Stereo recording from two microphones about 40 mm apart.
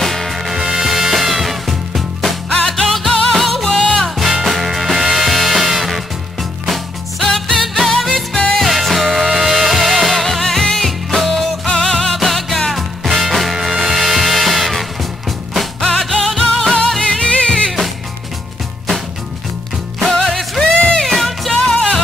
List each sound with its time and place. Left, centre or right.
0.0 s music: centre
3.6 s music: centre
4.2 s music: centre
15.9 s music: centre
17.0 s music: centre
20.2 s music: centre
20.7 s music: left
21.0 s music: centre
21.5 s music: left